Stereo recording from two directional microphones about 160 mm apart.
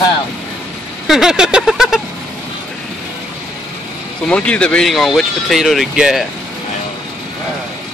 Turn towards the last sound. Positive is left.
turn(degrees=-5)  # may be behind; listen again after turning